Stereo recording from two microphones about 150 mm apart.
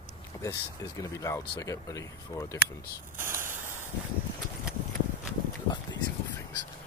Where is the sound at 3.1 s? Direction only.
15° right (ahead or behind).